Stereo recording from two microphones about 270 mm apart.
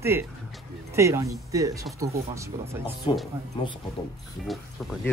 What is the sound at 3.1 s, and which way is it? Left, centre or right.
Speech, centre.